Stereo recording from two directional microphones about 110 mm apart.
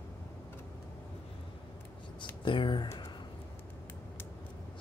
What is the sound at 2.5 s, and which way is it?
Speech, 50° left (ahead or behind).